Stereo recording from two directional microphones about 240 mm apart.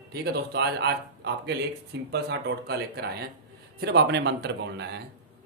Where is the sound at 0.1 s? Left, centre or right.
Right.